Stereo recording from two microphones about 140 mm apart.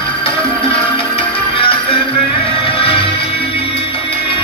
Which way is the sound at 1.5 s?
40° left (ahead or behind).